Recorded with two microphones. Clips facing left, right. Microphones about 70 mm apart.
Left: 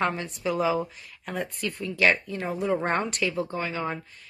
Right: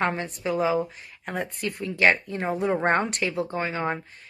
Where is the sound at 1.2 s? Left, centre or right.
Right.